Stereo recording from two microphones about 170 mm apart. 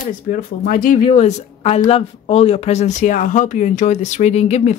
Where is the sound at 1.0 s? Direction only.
40° left (ahead or behind).